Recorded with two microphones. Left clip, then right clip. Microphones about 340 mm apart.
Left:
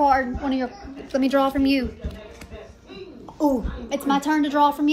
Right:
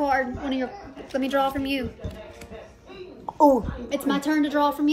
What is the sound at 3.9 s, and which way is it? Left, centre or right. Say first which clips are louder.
Speech: left 3 dB; centre.